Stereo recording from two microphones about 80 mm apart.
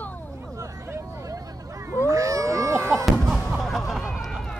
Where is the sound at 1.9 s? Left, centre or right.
Right.